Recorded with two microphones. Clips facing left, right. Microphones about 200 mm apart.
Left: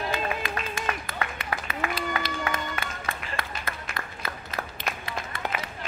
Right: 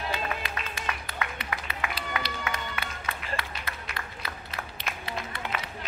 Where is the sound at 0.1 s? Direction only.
50° left (ahead or behind).